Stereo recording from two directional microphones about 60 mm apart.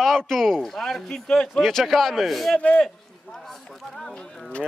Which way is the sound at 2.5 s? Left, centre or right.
Centre.